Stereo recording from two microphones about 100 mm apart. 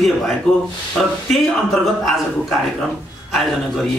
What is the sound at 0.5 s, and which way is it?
A man's voice, 5° left (ahead or behind).